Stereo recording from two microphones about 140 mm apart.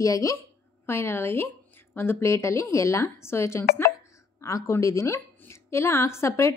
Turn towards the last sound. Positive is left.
turn(degrees=20)  # may be behind; listen again after turning